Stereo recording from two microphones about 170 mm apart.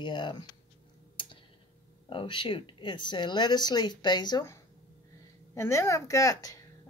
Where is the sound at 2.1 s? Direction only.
30° left (ahead or behind).